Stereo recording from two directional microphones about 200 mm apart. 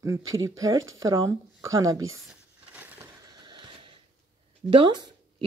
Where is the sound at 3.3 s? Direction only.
20° right (ahead or behind).